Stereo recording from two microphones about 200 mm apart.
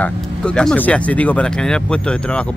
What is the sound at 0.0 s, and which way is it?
Speech, 5° left (ahead or behind).